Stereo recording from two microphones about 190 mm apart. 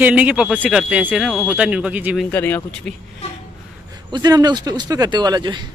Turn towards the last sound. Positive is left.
turn(degrees=-20)  # may be behind; listen again after turning